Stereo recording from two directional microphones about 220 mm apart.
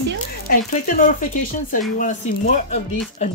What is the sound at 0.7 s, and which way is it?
Speech, 35° left (ahead or behind).